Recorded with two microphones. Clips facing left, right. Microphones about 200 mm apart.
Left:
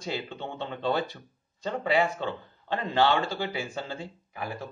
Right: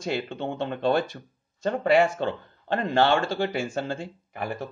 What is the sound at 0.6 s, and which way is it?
Speech, 75° right (ahead or behind).